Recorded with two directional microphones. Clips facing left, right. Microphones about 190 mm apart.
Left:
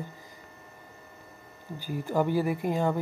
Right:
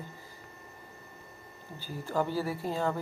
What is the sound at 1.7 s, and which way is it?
Speech, 15° left (ahead or behind).